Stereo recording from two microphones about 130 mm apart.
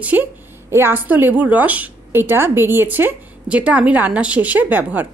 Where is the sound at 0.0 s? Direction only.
15° right (ahead or behind).